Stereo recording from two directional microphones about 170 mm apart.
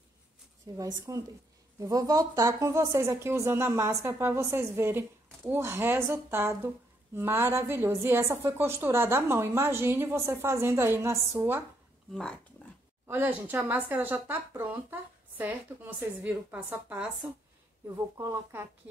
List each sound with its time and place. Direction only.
0.7 s a woman's voice: 20° right (ahead or behind)
12.1 s speech: 5° left (ahead or behind)
13.0 s a woman's voice: 10° right (ahead or behind)
17.8 s a woman's voice: 20° right (ahead or behind)